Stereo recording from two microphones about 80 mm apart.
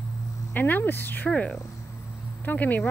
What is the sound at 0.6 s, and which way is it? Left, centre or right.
A woman's voice, left.